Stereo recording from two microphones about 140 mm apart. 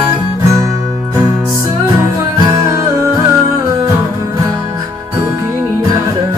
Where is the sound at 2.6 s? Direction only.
20° right (ahead or behind).